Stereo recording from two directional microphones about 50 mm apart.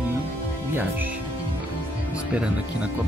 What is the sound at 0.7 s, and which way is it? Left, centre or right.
Speech, right.